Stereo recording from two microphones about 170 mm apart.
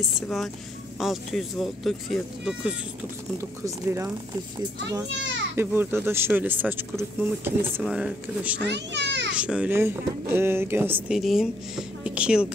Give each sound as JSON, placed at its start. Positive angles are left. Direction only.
{"t": 0.9, "sound": "speech", "side_deg": 0}
{"t": 3.6, "sound": "speech", "side_deg": -15}
{"t": 5.6, "sound": "speech", "side_deg": -15}
{"t": 8.7, "sound": "a child's voice", "side_deg": -90}
{"t": 9.4, "sound": "speech", "side_deg": -5}